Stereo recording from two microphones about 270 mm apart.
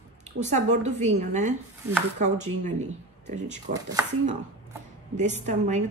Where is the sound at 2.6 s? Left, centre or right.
Right.